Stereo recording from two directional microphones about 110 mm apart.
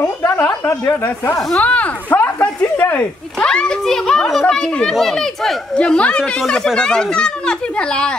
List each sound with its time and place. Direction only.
0.0 s a woman's voice: 20° left (ahead or behind)